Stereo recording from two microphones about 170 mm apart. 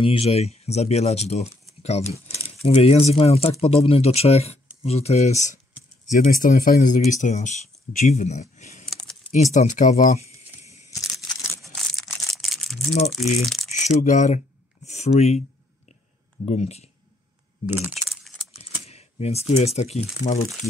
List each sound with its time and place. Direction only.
0.0 s speech: 35° left (ahead or behind)
6.1 s speech: 55° left (ahead or behind)
11.1 s a sound: centre (ahead or behind)
13.1 s speech: centre (ahead or behind)
13.7 s speech: 45° left (ahead or behind)
16.4 s speech: 40° left (ahead or behind)
18.0 s keys jangling: centre (ahead or behind)
18.6 s a sound: 40° left (ahead or behind)